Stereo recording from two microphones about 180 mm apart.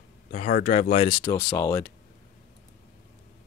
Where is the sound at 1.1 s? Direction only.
25° left (ahead or behind).